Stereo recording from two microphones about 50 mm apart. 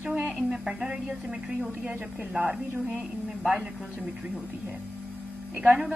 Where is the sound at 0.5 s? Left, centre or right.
Centre.